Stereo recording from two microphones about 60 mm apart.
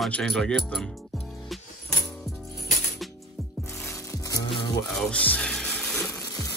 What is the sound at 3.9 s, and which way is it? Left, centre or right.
Music, left.